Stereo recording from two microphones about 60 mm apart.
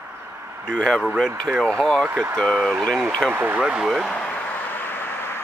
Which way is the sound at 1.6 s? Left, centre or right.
Centre.